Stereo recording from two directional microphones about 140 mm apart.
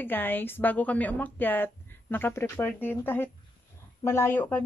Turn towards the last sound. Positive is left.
turn(degrees=15)  # may be behind; listen again after turning